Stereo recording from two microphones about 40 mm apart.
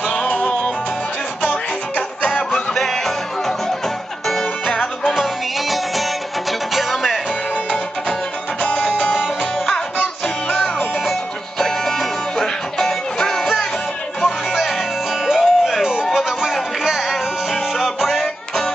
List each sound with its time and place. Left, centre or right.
2.0 s music: left
2.7 s music: centre
4.6 s music: left
5.1 s music: centre
8.6 s music: centre
11.1 s music: centre
14.2 s music: centre
17.7 s music: centre